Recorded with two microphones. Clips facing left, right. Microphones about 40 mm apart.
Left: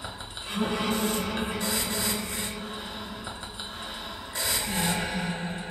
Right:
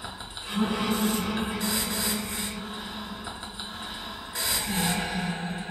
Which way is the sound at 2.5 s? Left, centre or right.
Centre.